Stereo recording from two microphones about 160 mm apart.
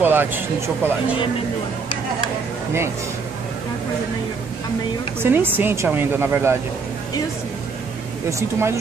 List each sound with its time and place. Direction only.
0.0 s speech: 10° right (ahead or behind)
5.2 s speech: 15° right (ahead or behind)
8.3 s speech: 15° right (ahead or behind)